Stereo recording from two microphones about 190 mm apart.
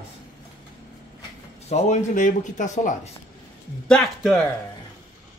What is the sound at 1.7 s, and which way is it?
Speech, 35° left (ahead or behind).